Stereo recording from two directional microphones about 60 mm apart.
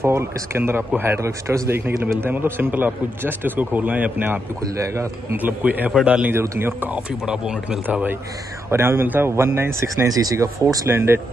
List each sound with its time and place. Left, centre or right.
0.0 s a man's voice: right
6.3 s speech: right
6.6 s speech: right
7.2 s speech: centre
7.8 s speech: right
8.6 s speech: right
9.0 s speech: right
9.3 s speech: right
10.0 s speech: right
10.3 s speech: right
10.9 s speech: right